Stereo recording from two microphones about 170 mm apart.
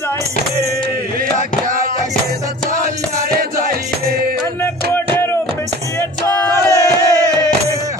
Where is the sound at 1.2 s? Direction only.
55° right (ahead or behind).